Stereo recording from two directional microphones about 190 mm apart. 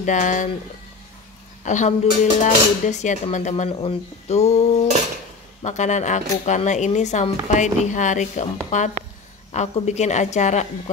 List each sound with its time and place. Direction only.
0.0 s speech: 40° left (ahead or behind)
1.6 s a woman's voice: 40° left (ahead or behind)